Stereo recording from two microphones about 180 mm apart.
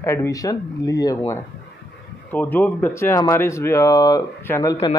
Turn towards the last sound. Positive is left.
turn(degrees=20)  # may be behind; listen again after turning